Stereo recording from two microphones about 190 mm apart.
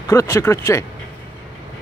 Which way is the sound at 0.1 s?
15° left (ahead or behind).